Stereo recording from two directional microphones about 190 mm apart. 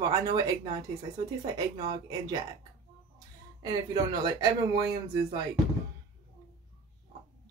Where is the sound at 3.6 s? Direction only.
20° right (ahead or behind).